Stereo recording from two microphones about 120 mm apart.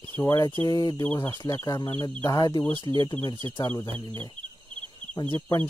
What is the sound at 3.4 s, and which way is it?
Speech, 25° left (ahead or behind).